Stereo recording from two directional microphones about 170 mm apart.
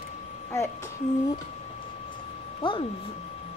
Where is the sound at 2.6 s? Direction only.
30° left (ahead or behind).